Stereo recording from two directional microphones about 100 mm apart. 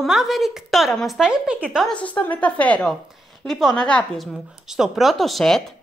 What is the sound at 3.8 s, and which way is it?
Speech, 10° left (ahead or behind).